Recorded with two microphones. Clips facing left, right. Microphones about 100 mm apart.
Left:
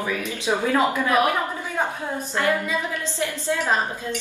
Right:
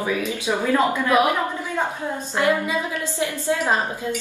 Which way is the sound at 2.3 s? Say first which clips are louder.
Right 2 dB; 20° right (ahead or behind).